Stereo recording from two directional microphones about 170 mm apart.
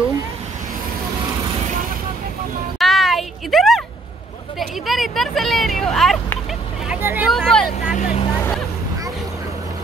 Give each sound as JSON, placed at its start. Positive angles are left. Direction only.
{"t": 2.8, "sound": "a sound", "side_deg": 0}
{"t": 4.6, "sound": "vehicle", "side_deg": 0}
{"t": 6.9, "sound": "vehicle", "side_deg": -10}
{"t": 7.2, "sound": "vehicle", "side_deg": 5}
{"t": 7.9, "sound": "vehicle", "side_deg": 50}